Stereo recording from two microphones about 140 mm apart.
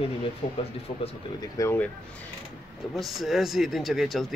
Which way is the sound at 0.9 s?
40° left (ahead or behind).